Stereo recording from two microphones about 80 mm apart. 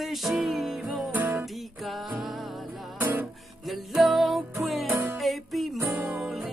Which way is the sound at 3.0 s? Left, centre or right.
Right.